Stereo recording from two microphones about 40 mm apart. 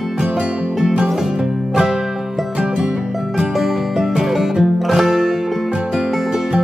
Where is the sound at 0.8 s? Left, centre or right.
Centre.